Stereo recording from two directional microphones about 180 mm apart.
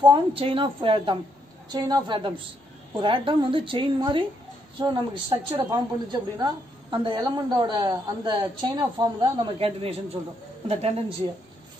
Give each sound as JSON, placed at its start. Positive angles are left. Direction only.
{"t": 0.0, "sound": "a woman's voice", "side_deg": -30}